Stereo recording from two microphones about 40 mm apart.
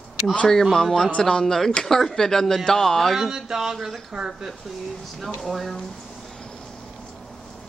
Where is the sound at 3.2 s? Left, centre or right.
Centre.